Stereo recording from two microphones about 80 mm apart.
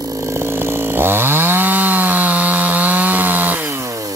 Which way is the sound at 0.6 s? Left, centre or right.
Right.